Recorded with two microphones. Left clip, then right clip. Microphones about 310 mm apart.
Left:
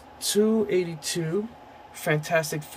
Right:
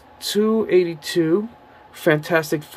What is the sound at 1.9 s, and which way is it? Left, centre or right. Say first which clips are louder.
Speech: right 6 dB; centre.